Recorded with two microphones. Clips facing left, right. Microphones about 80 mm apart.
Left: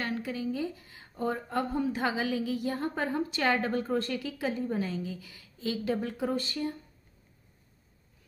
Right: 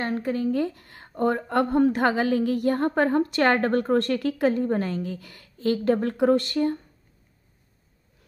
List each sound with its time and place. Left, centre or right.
0.0 s speech: right